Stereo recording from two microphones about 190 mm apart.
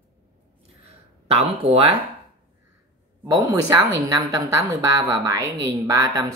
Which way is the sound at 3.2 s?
20° right (ahead or behind).